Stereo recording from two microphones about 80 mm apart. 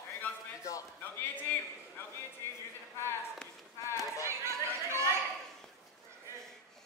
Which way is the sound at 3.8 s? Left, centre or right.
Left.